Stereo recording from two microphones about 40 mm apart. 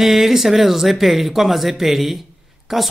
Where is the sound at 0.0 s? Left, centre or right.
Centre.